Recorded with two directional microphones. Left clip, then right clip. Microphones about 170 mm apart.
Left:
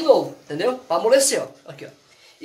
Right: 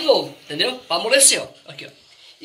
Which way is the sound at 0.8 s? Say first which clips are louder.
Left 2 dB; 40° left (ahead or behind).